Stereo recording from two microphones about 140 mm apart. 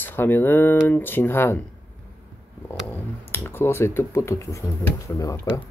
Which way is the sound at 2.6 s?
15° left (ahead or behind).